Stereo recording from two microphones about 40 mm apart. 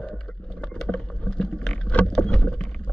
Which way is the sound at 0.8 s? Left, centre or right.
Centre.